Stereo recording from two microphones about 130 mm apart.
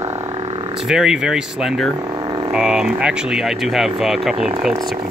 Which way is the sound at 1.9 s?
30° right (ahead or behind).